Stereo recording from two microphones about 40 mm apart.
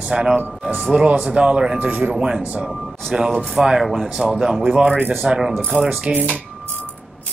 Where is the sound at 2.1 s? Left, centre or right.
Centre.